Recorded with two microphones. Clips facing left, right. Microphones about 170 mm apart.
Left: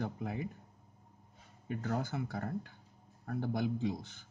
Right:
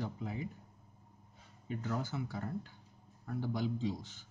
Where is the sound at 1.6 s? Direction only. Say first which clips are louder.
Left 2 dB; 55° left (ahead or behind).